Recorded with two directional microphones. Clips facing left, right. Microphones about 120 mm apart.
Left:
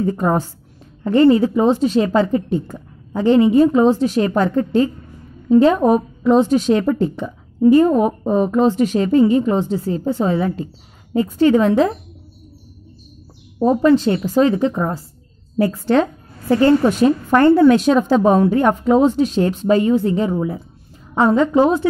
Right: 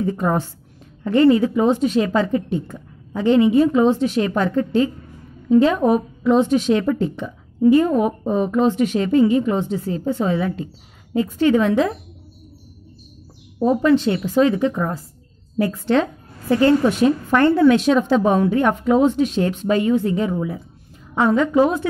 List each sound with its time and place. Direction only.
0.0 s a woman's voice: 40° left (ahead or behind)
13.6 s a woman's voice: 40° left (ahead or behind)